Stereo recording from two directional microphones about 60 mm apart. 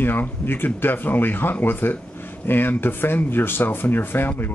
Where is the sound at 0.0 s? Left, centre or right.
Left.